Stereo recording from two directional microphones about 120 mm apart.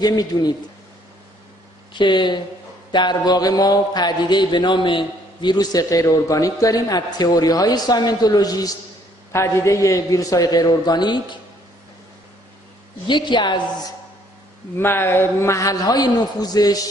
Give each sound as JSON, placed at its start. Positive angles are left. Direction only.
{"t": 0.0, "sound": "speech", "side_deg": 30}
{"t": 2.0, "sound": "a man's voice", "side_deg": 40}
{"t": 13.0, "sound": "speech", "side_deg": 40}
{"t": 14.8, "sound": "a man's voice", "side_deg": 20}